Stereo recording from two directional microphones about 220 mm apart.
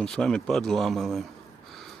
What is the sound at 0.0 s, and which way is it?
Speech, 5° left (ahead or behind).